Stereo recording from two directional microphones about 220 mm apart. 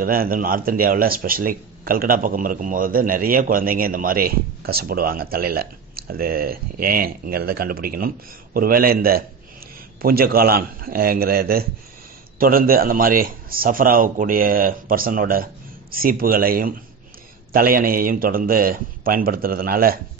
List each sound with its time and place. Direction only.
0.0 s speech: 40° right (ahead or behind)